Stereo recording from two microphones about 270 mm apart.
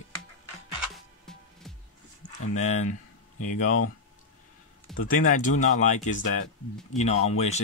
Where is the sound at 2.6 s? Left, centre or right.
Left.